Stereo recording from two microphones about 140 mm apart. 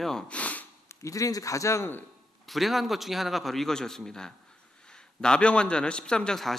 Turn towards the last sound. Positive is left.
turn(degrees=5)  # may be behind; listen again after turning